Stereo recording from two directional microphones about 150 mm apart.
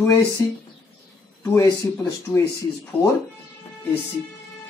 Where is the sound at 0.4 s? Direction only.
25° left (ahead or behind).